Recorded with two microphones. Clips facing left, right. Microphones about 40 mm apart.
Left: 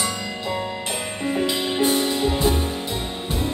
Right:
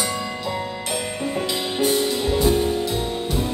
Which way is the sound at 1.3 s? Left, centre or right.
Left.